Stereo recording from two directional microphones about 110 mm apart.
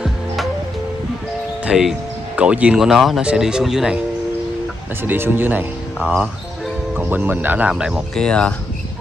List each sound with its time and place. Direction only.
1.7 s speech: 5° right (ahead or behind)
5.0 s speech: 20° right (ahead or behind)
7.0 s speech: 15° right (ahead or behind)
8.1 s speech: 10° left (ahead or behind)